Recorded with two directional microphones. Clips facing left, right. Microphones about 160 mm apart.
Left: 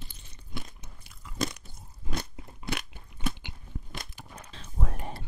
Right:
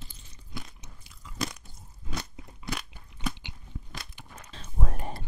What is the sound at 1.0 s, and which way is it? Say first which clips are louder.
Crunch: left 2 dB; 55° left (ahead or behind).